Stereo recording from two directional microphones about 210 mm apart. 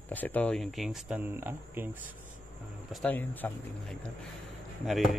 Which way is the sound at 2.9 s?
5° left (ahead or behind).